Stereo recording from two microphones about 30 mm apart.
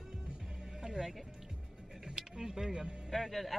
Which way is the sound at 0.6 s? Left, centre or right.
Centre.